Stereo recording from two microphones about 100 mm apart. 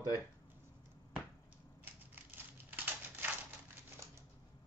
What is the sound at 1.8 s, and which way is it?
Typewriter, 20° right (ahead or behind).